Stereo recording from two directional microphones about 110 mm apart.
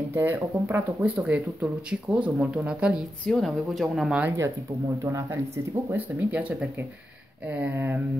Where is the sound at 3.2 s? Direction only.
5° left (ahead or behind).